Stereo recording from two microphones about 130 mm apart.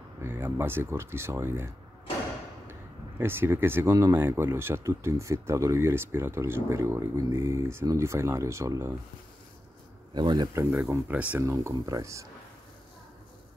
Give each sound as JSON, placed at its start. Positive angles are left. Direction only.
{"t": 0.2, "sound": "speech", "side_deg": -15}
{"t": 3.2, "sound": "speech", "side_deg": -20}
{"t": 10.1, "sound": "speech", "side_deg": -35}
{"t": 10.5, "sound": "speech", "side_deg": -20}